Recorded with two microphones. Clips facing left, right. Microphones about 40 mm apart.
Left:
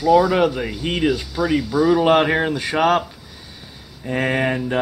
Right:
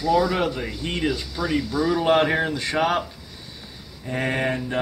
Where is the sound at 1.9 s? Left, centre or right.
Left.